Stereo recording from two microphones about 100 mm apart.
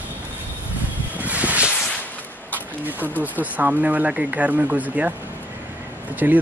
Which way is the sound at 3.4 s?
15° right (ahead or behind).